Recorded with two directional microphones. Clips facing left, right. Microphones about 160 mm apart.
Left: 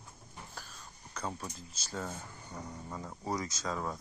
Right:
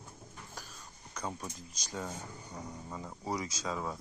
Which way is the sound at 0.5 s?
10° right (ahead or behind).